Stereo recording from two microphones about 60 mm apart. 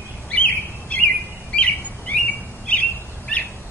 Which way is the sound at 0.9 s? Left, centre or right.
Left.